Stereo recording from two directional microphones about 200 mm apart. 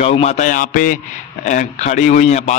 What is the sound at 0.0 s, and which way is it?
A man's voice, 30° left (ahead or behind).